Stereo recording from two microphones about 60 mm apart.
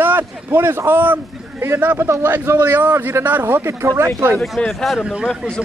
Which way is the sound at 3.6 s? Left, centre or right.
Right.